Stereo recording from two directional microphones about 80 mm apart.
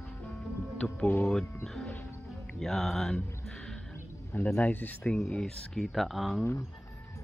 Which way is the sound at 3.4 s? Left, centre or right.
Centre.